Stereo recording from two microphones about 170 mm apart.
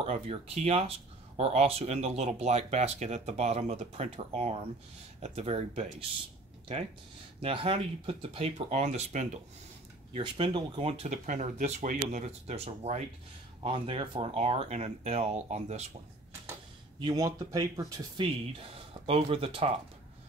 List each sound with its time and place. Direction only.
0.0 s speech: 35° right (ahead or behind)
10.1 s speech: 30° right (ahead or behind)
17.0 s speech: 20° right (ahead or behind)